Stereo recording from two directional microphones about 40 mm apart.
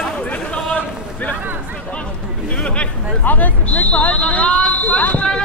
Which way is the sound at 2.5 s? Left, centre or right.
Left.